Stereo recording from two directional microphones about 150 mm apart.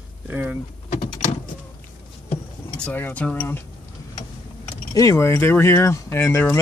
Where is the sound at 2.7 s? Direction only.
10° left (ahead or behind).